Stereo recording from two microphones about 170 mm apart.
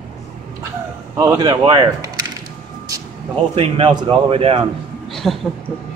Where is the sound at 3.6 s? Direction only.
30° right (ahead or behind).